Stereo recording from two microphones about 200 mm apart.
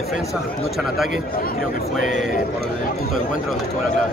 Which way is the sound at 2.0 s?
40° left (ahead or behind).